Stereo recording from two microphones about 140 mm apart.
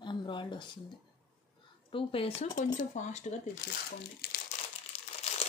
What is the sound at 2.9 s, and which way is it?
Speech, 55° left (ahead or behind).